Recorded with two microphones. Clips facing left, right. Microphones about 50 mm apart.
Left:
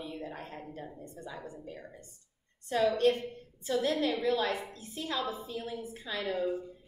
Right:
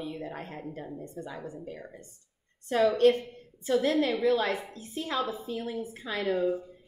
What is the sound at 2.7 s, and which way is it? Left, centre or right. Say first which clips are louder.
A woman's voice: right 4 dB; right.